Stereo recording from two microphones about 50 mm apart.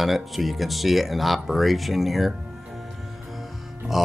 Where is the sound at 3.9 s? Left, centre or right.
Centre.